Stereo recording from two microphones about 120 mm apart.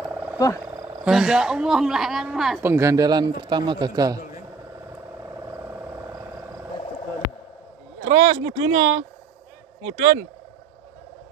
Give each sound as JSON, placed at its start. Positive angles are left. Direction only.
{"t": 0.0, "sound": "frog", "side_deg": -10}
{"t": 1.0, "sound": "speech", "side_deg": -5}
{"t": 2.6, "sound": "speech", "side_deg": -20}
{"t": 8.0, "sound": "speech", "side_deg": -50}